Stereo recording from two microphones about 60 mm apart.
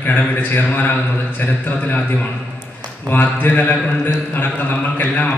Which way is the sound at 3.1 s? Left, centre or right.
Left.